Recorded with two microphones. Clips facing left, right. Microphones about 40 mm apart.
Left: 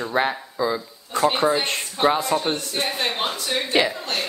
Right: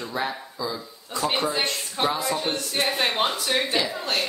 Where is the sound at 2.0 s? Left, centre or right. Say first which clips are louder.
Left 5 dB; centre.